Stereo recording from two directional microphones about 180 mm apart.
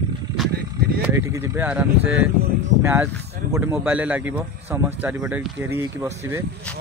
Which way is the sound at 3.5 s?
10° right (ahead or behind).